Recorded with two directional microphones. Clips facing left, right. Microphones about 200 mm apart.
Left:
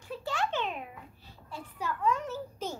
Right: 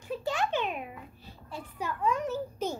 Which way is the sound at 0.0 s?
15° right (ahead or behind).